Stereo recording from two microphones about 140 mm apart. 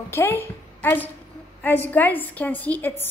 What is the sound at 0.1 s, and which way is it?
A woman's voice, 15° left (ahead or behind).